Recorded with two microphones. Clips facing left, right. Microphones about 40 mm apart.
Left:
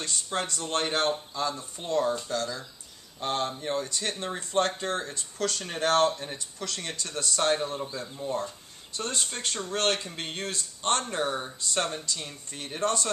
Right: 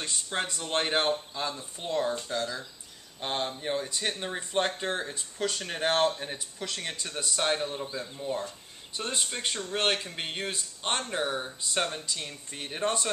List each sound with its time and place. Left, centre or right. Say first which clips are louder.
0.0 s speech: left 1 dB; centre
8.0 s speech: left 1 dB; centre
8.9 s speech: even; centre
11.6 s speech: left 1 dB; right